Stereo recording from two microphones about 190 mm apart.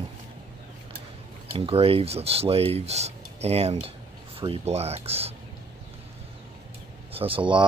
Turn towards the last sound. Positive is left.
turn(degrees=-25)  # may be behind; listen again after turning